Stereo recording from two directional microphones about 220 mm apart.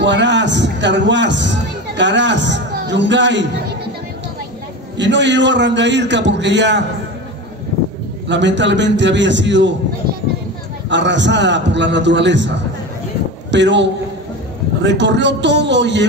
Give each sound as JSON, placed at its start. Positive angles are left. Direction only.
{"t": 0.0, "sound": "a man's voice", "side_deg": -55}
{"t": 4.9, "sound": "a man's voice", "side_deg": -55}
{"t": 8.3, "sound": "a man's voice", "side_deg": -55}
{"t": 10.9, "sound": "a man's voice", "side_deg": -55}